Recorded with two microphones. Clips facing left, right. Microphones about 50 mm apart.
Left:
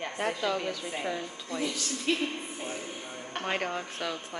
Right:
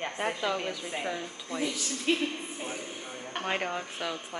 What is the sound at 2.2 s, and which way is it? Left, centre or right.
Speech, centre.